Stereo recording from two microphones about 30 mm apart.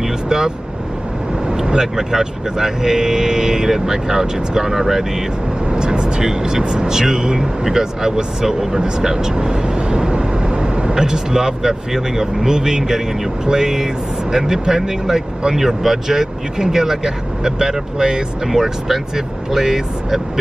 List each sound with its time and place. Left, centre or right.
1.6 s speech: centre
5.7 s speech: right
9.4 s speech: right
10.1 s vehicle: right
11.0 s speech: right
18.5 s speech: centre